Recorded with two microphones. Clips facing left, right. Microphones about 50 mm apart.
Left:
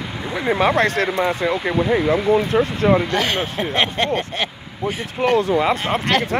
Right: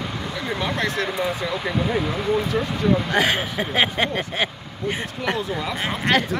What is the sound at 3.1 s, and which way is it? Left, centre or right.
Speech, centre.